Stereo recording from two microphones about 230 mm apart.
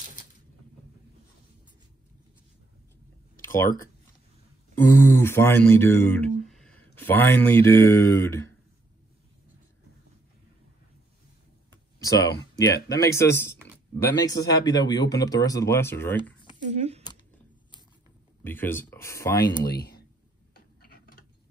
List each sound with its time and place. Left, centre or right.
4.7 s speech: centre
12.0 s speech: centre
16.6 s speech: right
18.4 s speech: centre
19.7 s speech: left
20.5 s tick-tock: left